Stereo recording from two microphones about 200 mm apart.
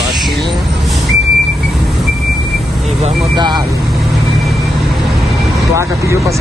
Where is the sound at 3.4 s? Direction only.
20° right (ahead or behind).